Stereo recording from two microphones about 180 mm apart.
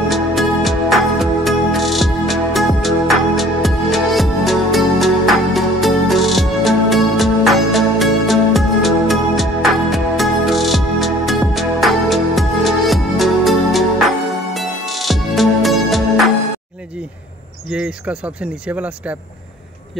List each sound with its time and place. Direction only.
0.1 s music: centre (ahead or behind)
17.6 s speech: 5° right (ahead or behind)